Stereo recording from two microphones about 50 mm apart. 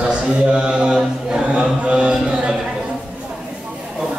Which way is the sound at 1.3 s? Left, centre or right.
Centre.